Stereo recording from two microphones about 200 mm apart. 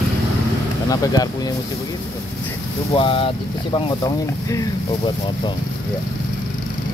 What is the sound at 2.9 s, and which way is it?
Speech, 25° left (ahead or behind).